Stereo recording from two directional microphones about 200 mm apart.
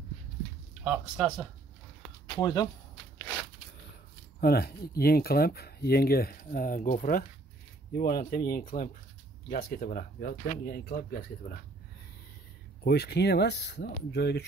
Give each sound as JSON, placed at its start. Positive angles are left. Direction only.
{"t": 0.8, "sound": "speech", "side_deg": -5}
{"t": 2.2, "sound": "speech", "side_deg": 20}
{"t": 4.4, "sound": "speech", "side_deg": 50}
{"t": 12.8, "sound": "speech", "side_deg": 55}